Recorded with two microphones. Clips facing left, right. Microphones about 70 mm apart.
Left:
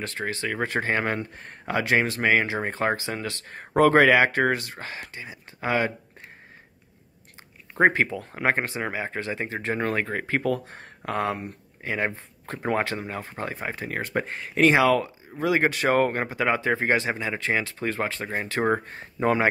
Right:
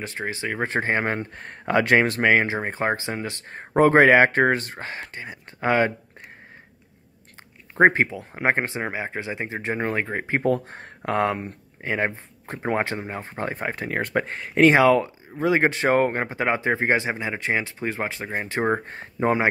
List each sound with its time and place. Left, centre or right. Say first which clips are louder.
0.0 s speech: even; centre
2.6 s speech: right 1 dB; right
7.8 s speech: right 3 dB; right
8.1 s speech: left 1 dB; centre
8.5 s speech: right 2 dB; right
10.4 s speech: right 4 dB; right
12.4 s speech: right 1 dB; right